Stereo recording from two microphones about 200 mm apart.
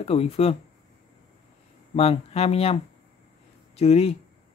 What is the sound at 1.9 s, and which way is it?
Speech, 30° left (ahead or behind).